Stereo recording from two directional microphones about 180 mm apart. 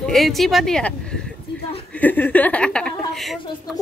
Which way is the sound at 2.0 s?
10° left (ahead or behind).